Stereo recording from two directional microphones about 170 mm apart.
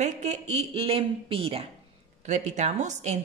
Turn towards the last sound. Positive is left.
turn(degrees=-45)  # may be behind; listen again after turning